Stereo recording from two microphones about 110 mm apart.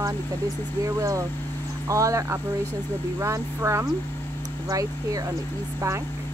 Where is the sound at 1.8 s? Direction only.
30° right (ahead or behind).